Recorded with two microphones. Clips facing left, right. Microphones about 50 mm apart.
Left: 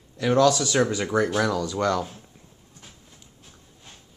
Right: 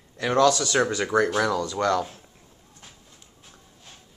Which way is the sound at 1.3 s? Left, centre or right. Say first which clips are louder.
Even; centre.